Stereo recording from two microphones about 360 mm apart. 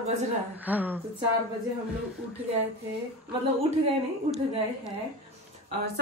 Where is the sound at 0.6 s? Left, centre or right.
Centre.